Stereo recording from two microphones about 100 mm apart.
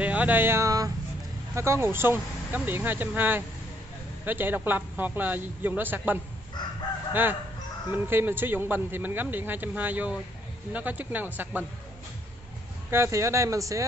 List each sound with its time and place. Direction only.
0.0 s speech: 15° right (ahead or behind)
0.7 s a sound: 35° right (ahead or behind)
1.5 s speech: 25° right (ahead or behind)
7.9 s speech: 20° right (ahead or behind)
12.9 s speech: 25° right (ahead or behind)